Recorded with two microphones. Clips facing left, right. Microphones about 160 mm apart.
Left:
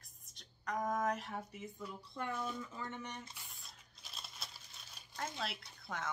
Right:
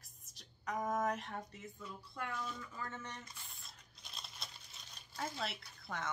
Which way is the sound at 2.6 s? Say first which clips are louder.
Left 2 dB; 20° left (ahead or behind).